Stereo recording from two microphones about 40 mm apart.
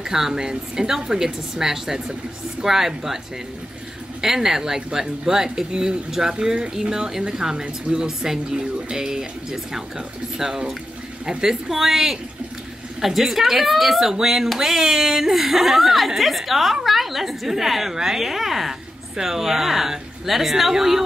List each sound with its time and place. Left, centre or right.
0.0 s speech: centre
4.2 s a woman's voice: centre